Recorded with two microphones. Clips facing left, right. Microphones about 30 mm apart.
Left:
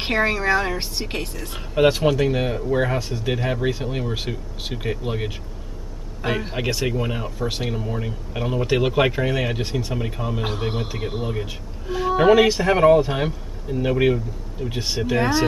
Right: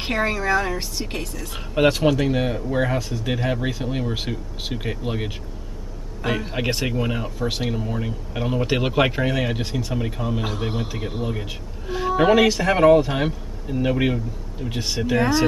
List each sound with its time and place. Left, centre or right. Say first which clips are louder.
0.0 s a woman's voice: left 2 dB; left
2.0 s a man's voice: even; centre
6.9 s a man's voice: even; centre
9.7 s a woman's voice: left 1 dB; centre
9.9 s a man's voice: right 1 dB; centre
11.3 s a man's voice: left 2 dB; centre